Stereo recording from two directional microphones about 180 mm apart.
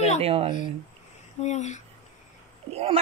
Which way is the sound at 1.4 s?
40° left (ahead or behind).